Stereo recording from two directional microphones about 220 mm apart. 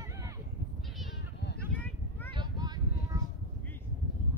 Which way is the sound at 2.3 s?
20° right (ahead or behind).